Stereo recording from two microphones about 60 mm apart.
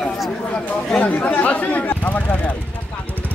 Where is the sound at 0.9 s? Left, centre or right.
Left.